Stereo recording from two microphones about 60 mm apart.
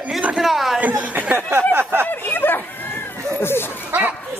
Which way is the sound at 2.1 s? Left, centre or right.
Left.